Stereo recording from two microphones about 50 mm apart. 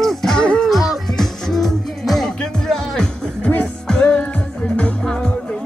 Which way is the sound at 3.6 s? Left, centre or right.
Left.